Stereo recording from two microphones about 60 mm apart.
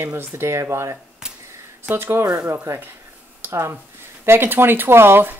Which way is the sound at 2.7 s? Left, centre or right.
Right.